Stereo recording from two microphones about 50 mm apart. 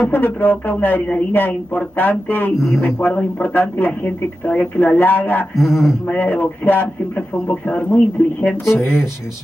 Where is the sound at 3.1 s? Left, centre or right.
Left.